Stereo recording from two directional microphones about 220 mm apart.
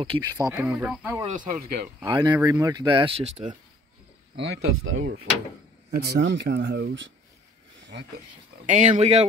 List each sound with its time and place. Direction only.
0.0 s speech: 20° right (ahead or behind)
0.5 s speech: 5° right (ahead or behind)
1.2 s speech: 35° right (ahead or behind)
2.0 s speech: 15° right (ahead or behind)
4.4 s speech: 55° right (ahead or behind)
8.6 s speech: 35° right (ahead or behind)